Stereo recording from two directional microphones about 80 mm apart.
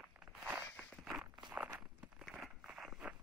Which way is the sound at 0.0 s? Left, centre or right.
Centre.